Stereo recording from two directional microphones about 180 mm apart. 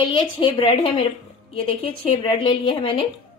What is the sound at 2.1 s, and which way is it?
Speech, 25° left (ahead or behind).